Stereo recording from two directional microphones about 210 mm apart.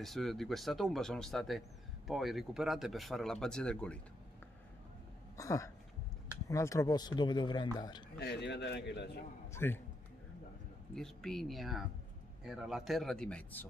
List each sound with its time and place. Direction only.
0.0 s speech: centre (ahead or behind)
5.4 s speech: 15° left (ahead or behind)
8.2 s a man's voice: 55° left (ahead or behind)
9.5 s a man's voice: 10° left (ahead or behind)
11.0 s speech: centre (ahead or behind)